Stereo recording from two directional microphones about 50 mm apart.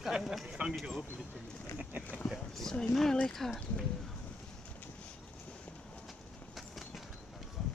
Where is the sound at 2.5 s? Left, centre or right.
Centre.